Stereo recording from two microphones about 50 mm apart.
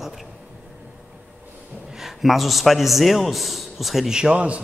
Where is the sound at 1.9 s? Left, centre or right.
Centre.